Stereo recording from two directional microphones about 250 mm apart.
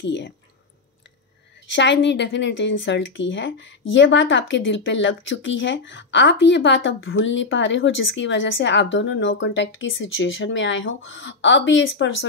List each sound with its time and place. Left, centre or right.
0.0 s speech: left
1.7 s speech: left